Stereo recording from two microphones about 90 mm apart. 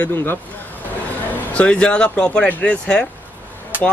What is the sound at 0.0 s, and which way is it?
Speech, 25° left (ahead or behind).